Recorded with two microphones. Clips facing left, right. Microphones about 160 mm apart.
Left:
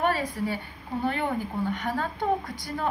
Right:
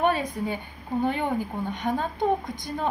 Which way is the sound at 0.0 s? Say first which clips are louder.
Right 2 dB; 20° right (ahead or behind).